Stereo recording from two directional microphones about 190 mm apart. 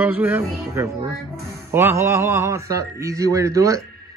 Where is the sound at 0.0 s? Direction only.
10° right (ahead or behind).